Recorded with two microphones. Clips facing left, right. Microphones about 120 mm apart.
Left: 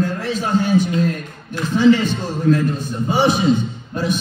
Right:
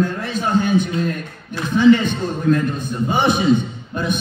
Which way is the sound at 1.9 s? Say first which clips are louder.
Right 1 dB; 55° right (ahead or behind).